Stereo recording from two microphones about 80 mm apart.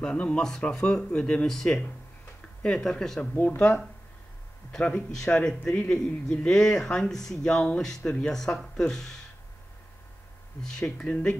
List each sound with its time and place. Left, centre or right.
0.0 s speech: centre
3.3 s speech: centre
4.7 s speech: centre
10.6 s speech: centre